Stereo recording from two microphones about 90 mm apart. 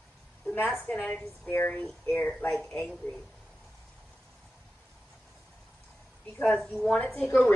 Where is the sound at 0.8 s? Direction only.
10° left (ahead or behind).